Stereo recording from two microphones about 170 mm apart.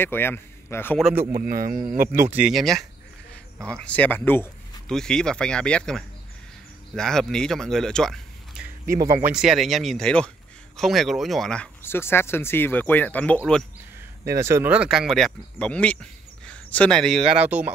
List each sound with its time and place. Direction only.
0.0 s speech: 15° left (ahead or behind)
1.3 s speech: 55° right (ahead or behind)
2.3 s speech: 5° right (ahead or behind)
9.0 s speech: 20° right (ahead or behind)
9.3 s speech: centre (ahead or behind)
14.2 s speech: 15° right (ahead or behind)